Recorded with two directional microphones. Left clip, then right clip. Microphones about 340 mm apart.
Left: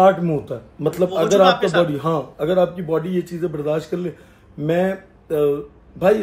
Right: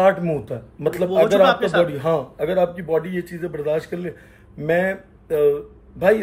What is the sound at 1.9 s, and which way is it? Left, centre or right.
Speech, centre.